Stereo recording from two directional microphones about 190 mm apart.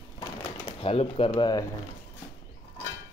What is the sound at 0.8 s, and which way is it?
Speech, 30° left (ahead or behind).